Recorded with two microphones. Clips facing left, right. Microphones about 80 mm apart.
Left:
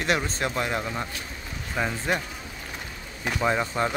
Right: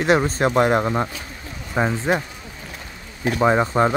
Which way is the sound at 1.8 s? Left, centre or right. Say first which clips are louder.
Right 7 dB; right.